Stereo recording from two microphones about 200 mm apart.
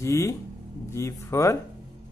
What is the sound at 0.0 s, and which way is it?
Speech, 15° left (ahead or behind).